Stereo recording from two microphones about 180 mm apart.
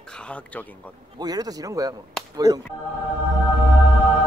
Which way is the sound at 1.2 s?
20° right (ahead or behind).